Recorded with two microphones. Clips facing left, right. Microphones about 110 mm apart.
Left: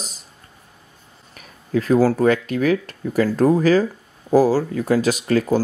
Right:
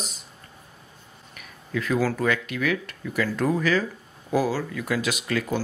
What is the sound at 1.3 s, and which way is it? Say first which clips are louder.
Speech: left 8 dB; 40° left (ahead or behind).